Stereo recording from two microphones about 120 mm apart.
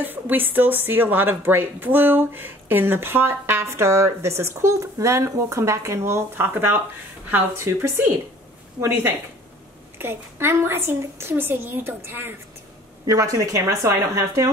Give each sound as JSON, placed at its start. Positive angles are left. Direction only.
{"t": 0.0, "sound": "speech", "side_deg": -15}